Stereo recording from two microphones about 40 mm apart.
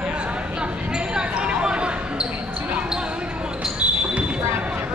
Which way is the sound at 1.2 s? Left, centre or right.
Right.